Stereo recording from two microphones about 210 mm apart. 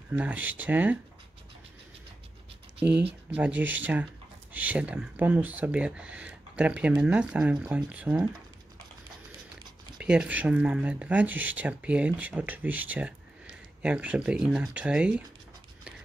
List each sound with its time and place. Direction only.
0.1 s speech: 5° right (ahead or behind)
2.8 s speech: 10° right (ahead or behind)
9.9 s speech: 5° right (ahead or behind)